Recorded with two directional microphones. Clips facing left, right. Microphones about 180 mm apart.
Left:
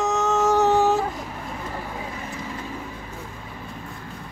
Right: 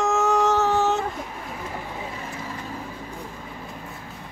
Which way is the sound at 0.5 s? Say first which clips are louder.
Left 3 dB; 15° left (ahead or behind).